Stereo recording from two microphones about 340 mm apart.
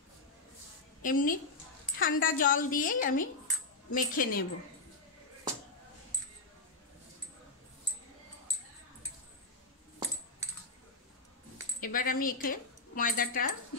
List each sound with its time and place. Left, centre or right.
1.0 s a woman's voice: left
11.8 s speech: left